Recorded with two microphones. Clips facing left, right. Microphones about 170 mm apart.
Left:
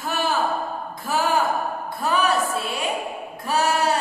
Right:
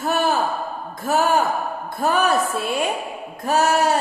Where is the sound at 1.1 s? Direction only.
50° right (ahead or behind).